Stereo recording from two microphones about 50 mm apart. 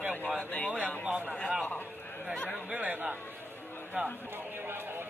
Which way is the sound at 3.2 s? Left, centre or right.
Left.